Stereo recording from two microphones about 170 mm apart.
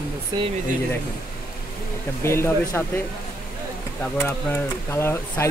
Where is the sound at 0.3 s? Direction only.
25° right (ahead or behind).